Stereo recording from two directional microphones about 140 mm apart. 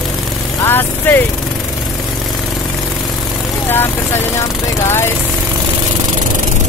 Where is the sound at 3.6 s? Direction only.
15° left (ahead or behind).